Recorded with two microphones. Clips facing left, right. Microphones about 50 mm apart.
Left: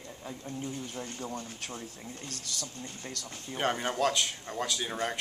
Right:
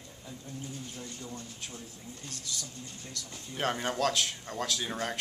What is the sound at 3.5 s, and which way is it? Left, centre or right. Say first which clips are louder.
Speech: left 1 dB; centre.